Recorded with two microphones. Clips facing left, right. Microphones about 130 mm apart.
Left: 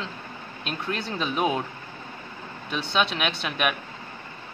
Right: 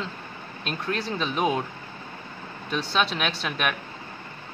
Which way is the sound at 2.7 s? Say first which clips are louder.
Even; centre (ahead or behind).